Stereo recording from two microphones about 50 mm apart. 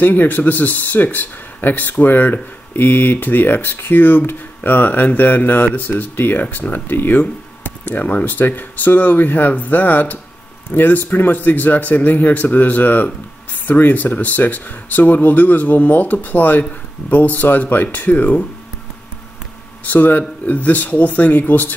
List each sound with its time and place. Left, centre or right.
0.0 s speech: left
19.9 s speech: left